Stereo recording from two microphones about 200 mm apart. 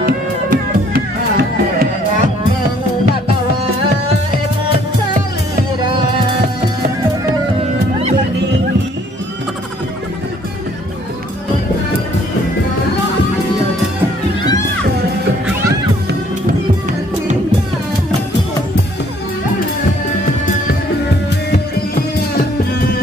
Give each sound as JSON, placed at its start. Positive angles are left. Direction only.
{"t": 0.0, "sound": "music", "side_deg": -50}